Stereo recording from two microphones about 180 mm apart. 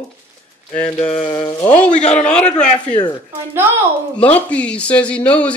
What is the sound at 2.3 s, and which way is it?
Speech, 5° left (ahead or behind).